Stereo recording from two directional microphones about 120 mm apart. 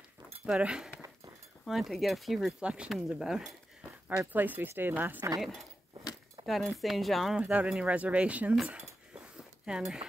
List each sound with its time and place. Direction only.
0.5 s speech: 10° right (ahead or behind)
4.3 s speech: 15° right (ahead or behind)
5.4 s speech: centre (ahead or behind)